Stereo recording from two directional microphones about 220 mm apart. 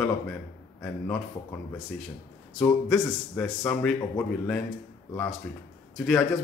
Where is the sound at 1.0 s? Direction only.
5° left (ahead or behind).